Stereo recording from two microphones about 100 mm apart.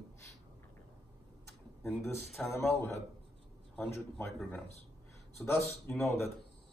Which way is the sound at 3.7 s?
5° left (ahead or behind).